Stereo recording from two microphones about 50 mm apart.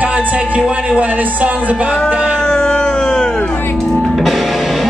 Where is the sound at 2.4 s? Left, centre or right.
Centre.